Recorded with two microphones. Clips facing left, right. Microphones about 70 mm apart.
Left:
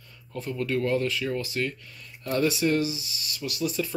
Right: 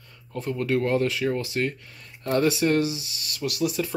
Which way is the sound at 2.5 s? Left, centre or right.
Right.